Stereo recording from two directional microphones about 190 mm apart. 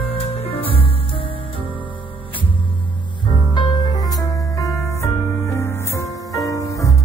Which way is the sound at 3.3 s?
25° left (ahead or behind).